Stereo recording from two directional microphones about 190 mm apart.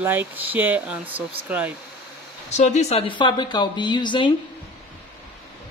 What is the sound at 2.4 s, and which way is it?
Speech, 35° left (ahead or behind).